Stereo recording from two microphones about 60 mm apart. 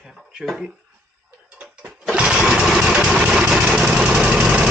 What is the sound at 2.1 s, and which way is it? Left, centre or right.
Lawn mower, centre.